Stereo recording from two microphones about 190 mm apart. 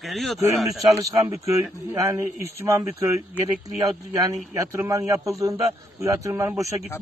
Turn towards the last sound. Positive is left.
turn(degrees=-15)  # may be behind; listen again after turning